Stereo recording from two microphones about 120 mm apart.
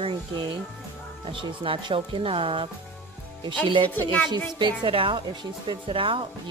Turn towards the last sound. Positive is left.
turn(degrees=-45)  # may be behind; listen again after turning